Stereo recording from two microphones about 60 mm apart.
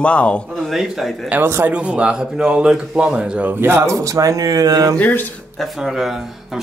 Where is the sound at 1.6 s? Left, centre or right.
Centre.